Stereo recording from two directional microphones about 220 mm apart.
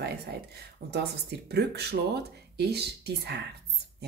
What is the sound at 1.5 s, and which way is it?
A woman's voice, 50° right (ahead or behind).